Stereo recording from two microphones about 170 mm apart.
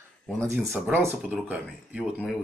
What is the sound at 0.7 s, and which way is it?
Speech, 10° right (ahead or behind).